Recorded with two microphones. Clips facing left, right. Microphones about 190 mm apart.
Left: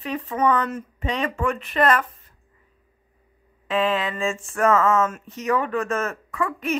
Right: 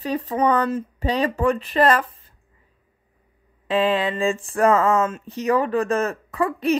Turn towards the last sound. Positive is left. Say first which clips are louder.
# right 5 dB
turn(degrees=-35)  # may be behind; listen again after turning